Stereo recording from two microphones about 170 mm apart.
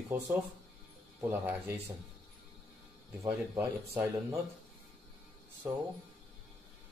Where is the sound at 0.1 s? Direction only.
10° right (ahead or behind).